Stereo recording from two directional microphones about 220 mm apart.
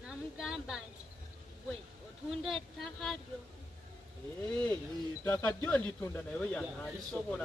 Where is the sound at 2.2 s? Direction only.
Centre (ahead or behind).